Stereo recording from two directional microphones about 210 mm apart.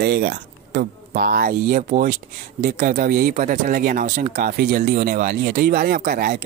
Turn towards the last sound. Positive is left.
turn(degrees=-45)  # may be behind; listen again after turning